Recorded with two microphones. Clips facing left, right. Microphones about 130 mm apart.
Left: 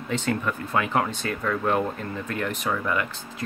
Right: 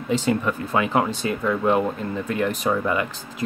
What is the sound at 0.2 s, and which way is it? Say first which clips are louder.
Speech: right 4 dB; 10° right (ahead or behind).